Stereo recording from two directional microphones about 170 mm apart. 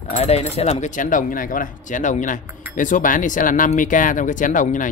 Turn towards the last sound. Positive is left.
turn(degrees=50)  # may be behind; listen again after turning